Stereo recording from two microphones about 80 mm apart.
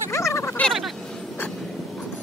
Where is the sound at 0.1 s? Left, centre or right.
Left.